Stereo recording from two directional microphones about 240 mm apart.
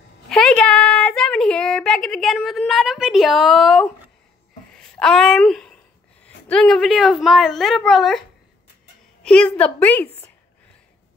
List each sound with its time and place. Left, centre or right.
0.3 s a sound: centre
6.2 s a woman's voice: centre
9.2 s a woman's voice: centre